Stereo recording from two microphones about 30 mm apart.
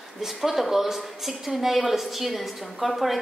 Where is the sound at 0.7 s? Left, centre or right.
Centre.